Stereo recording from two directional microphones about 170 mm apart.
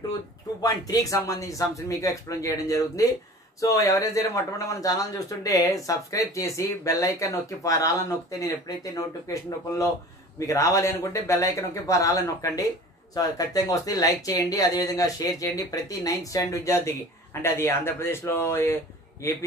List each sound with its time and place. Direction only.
0.6 s a man's voice: 20° left (ahead or behind)